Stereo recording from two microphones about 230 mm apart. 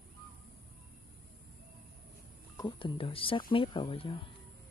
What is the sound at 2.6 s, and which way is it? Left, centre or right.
Speech, left.